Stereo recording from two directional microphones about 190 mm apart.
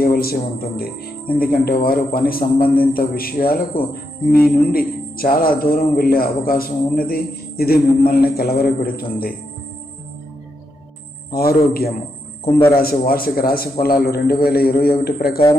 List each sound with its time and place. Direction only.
0.0 s a man's voice: 50° left (ahead or behind)
11.3 s a man's voice: 50° left (ahead or behind)